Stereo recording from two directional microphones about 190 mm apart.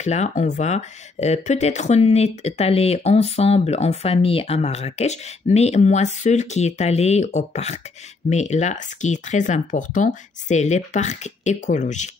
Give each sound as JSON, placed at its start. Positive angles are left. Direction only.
{"t": 0.0, "sound": "speech", "side_deg": 35}